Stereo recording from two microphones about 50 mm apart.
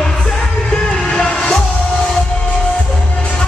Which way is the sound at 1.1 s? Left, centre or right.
Left.